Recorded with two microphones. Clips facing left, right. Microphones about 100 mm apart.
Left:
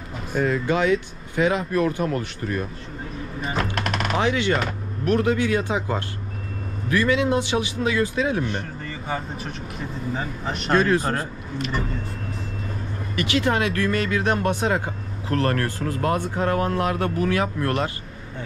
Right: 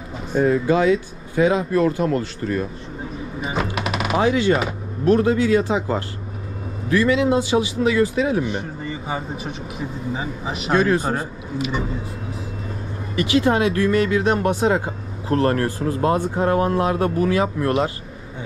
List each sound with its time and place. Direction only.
0.4 s a man's voice: 30° right (ahead or behind)
3.3 s a sound: 5° right (ahead or behind)
4.2 s a man's voice: 30° right (ahead or behind)
8.5 s speech: 5° right (ahead or behind)
13.1 s a man's voice: 25° right (ahead or behind)